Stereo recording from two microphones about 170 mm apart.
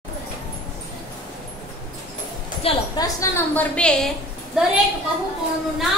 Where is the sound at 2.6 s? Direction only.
35° left (ahead or behind).